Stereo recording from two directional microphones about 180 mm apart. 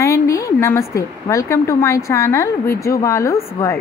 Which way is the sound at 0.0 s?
15° left (ahead or behind).